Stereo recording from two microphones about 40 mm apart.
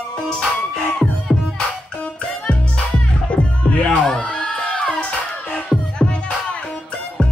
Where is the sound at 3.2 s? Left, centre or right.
Left.